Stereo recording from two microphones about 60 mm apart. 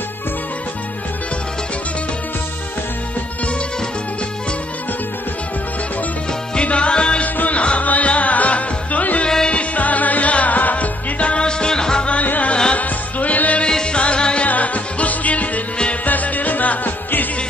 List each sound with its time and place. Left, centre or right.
6.5 s music: left